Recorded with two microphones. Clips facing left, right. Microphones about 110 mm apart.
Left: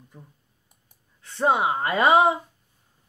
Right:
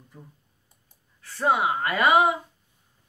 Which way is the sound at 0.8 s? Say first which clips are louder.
Right 1 dB; 20° left (ahead or behind).